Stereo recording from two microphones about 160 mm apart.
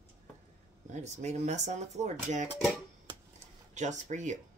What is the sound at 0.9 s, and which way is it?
Speech, 45° right (ahead or behind).